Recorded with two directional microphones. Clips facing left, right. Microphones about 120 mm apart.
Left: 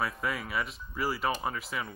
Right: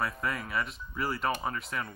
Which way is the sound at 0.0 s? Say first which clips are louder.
Even; centre (ahead or behind).